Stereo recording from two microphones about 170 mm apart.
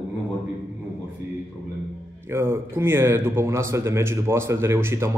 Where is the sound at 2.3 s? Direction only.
15° right (ahead or behind).